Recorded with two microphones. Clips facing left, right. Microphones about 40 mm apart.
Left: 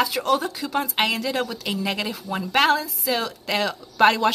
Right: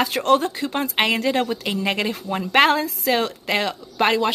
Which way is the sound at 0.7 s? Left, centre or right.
Right.